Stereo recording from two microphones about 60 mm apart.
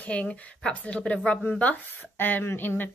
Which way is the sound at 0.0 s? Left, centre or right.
Left.